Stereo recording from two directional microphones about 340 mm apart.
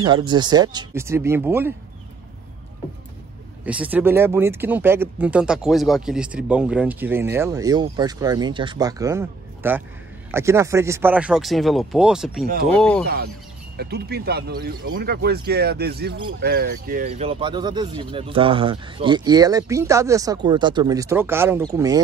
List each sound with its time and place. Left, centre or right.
0.0 s speech: centre
3.6 s speech: centre
13.7 s speech: right; by 22.0 s centre